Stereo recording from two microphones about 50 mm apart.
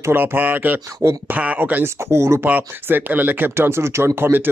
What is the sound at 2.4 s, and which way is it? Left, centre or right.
Speech, right.